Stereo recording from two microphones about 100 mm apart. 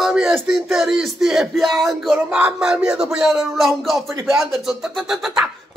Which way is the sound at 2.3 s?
15° right (ahead or behind).